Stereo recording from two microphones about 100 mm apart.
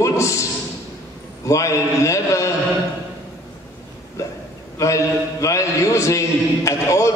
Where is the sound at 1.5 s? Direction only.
30° left (ahead or behind).